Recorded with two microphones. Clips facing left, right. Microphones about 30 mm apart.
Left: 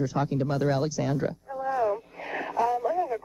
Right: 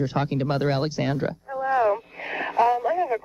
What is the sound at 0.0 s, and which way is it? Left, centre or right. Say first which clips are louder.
Speech: right 2 dB; right.